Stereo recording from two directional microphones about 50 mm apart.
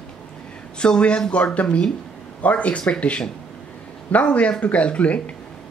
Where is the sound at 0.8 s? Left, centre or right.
Centre.